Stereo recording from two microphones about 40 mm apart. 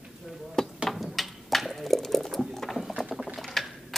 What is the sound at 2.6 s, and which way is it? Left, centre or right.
Rowboat, centre.